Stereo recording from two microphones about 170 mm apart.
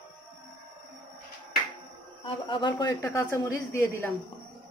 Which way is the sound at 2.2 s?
30° left (ahead or behind).